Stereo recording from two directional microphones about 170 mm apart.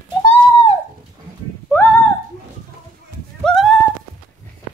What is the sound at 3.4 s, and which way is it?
Dog, centre (ahead or behind).